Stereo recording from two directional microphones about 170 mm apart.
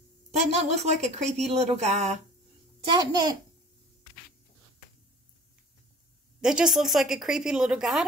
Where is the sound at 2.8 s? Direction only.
25° right (ahead or behind).